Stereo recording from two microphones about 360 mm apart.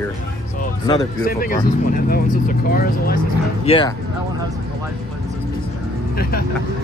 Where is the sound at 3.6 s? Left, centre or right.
Centre.